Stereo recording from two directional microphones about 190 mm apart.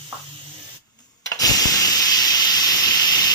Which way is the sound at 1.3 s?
20° left (ahead or behind).